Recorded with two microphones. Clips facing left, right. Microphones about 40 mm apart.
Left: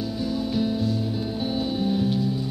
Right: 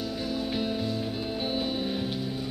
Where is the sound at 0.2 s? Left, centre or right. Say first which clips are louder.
Left 6 dB; centre.